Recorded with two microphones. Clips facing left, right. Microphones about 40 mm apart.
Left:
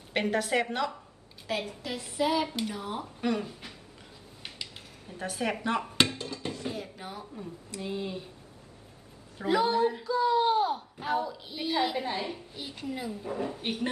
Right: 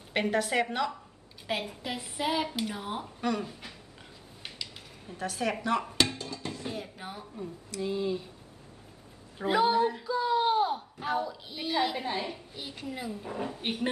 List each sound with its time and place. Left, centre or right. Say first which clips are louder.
0.1 s speech: even; centre
1.8 s a woman's voice: left 3 dB; centre
2.7 s a woman's voice: even; centre
3.2 s speech: left 1 dB; centre
5.1 s a woman's voice: even; centre
6.5 s speech: left 1 dB; centre
7.8 s a woman's voice: right 4 dB; centre
9.4 s a woman's voice: even; centre